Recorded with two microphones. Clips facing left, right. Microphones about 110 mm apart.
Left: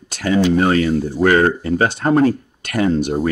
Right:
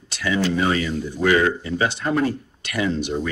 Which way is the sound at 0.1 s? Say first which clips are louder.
Left 5 dB; 45° left (ahead or behind).